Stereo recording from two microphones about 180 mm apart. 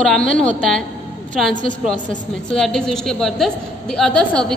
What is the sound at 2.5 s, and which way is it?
A woman's voice, centre (ahead or behind).